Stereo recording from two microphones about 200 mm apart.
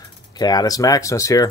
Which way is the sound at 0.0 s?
20° left (ahead or behind).